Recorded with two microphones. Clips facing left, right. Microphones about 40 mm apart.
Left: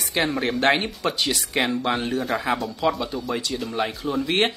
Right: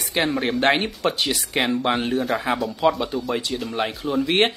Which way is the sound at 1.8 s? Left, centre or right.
Centre.